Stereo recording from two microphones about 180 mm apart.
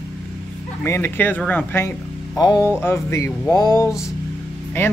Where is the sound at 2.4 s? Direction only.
20° left (ahead or behind).